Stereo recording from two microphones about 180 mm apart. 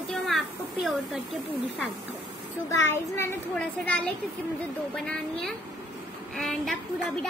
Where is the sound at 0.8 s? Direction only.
Centre (ahead or behind).